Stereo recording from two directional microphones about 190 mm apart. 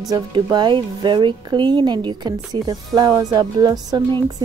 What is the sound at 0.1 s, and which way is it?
Speech, 25° right (ahead or behind).